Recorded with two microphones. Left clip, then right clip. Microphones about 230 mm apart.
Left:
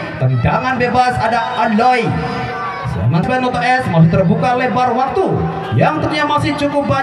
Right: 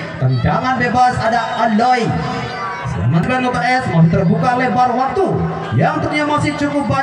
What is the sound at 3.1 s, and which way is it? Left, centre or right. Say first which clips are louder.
A man's voice: left 1 dB; left.